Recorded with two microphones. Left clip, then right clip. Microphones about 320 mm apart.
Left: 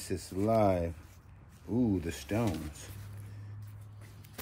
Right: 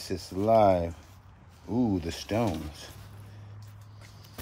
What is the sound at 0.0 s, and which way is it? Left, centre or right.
Speech, right.